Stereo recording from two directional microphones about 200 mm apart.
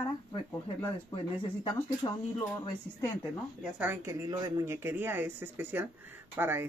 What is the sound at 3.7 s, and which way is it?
Speech, 10° right (ahead or behind).